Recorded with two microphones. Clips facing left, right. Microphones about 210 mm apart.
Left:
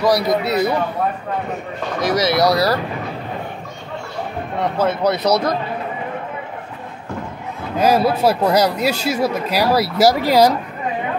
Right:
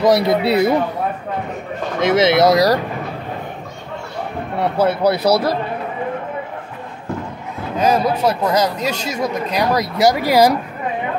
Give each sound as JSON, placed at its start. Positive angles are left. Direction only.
{"t": 0.0, "sound": "speech", "side_deg": -25}
{"t": 2.0, "sound": "speech", "side_deg": -25}
{"t": 4.6, "sound": "a man's voice", "side_deg": -10}
{"t": 7.8, "sound": "speech", "side_deg": 5}
{"t": 10.2, "sound": "a man's voice", "side_deg": -15}